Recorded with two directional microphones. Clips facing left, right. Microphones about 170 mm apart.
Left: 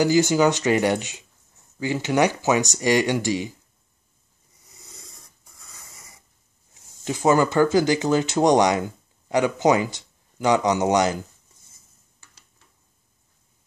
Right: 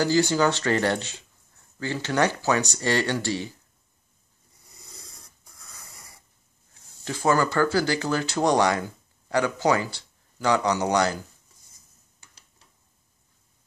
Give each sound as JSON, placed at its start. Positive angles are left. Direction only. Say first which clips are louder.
{"t": 0.0, "sound": "speech", "louder": "left 3 dB", "side_deg": 15}
{"t": 4.9, "sound": "filing", "louder": "even", "side_deg": 0}
{"t": 6.7, "sound": "speech", "louder": "left 5 dB", "side_deg": 20}